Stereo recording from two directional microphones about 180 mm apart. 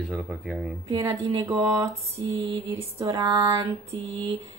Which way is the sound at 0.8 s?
15° right (ahead or behind).